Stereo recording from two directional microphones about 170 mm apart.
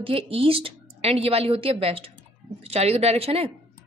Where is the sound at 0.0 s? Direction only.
35° right (ahead or behind).